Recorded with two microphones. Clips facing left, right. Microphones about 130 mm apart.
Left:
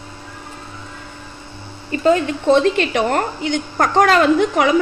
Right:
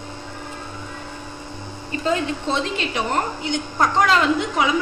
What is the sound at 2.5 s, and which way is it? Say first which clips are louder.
A woman's voice: left 13 dB; 60° left (ahead or behind).